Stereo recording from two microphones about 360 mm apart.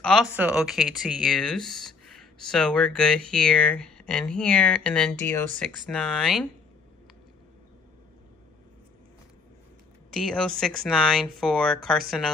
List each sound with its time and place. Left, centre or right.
0.0 s speech: centre
10.1 s speech: centre